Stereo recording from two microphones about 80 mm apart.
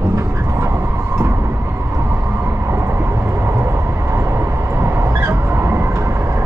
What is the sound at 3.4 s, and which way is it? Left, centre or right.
Train, right.